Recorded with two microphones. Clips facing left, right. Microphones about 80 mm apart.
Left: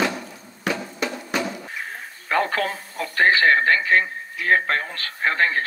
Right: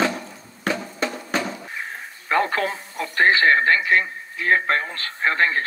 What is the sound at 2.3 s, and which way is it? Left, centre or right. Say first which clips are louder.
Speech: right 1 dB; right.